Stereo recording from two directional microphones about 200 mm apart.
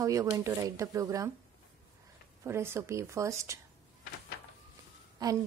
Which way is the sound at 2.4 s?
10° right (ahead or behind).